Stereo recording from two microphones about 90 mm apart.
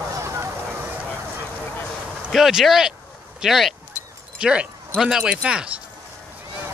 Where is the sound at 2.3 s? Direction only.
5° right (ahead or behind).